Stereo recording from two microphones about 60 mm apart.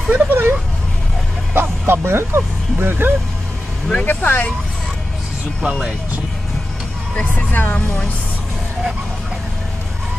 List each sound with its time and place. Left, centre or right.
0.1 s a sound: right
1.5 s speech: right
3.9 s speech: left
5.6 s speech: centre
7.2 s speech: left
7.6 s speech: left